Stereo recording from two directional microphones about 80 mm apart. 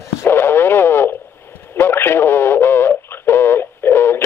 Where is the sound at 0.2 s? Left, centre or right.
Left.